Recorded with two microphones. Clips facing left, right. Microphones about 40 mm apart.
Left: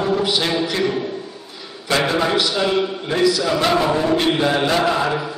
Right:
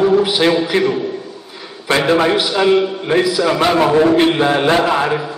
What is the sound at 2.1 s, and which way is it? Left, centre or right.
Speech, right.